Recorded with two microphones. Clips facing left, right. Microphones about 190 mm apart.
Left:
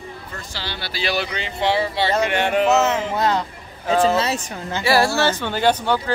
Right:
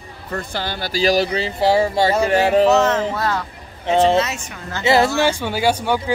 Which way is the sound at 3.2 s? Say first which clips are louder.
Left 2 dB; 20° left (ahead or behind).